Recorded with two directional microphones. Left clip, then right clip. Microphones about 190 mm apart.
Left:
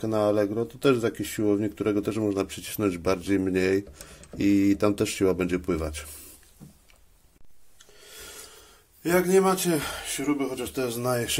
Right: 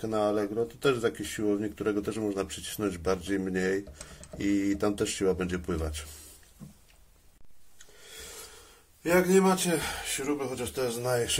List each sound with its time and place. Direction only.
0.0 s speech: 40° left (ahead or behind)
9.0 s speech: 55° left (ahead or behind)